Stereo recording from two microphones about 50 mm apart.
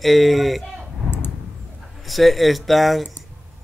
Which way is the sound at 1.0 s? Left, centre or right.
Left.